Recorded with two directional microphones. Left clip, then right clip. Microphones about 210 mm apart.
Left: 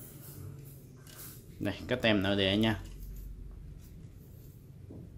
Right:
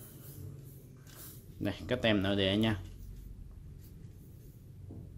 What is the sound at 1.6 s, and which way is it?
Speech, 5° right (ahead or behind).